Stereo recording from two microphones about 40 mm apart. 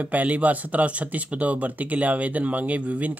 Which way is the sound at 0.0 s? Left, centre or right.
Right.